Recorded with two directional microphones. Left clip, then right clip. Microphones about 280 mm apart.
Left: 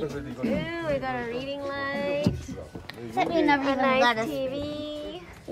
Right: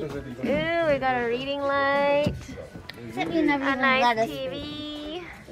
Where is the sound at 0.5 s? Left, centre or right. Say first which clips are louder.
Right 6 dB; centre.